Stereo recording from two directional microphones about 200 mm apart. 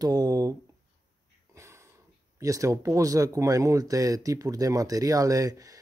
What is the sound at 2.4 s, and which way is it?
Speech, 15° right (ahead or behind).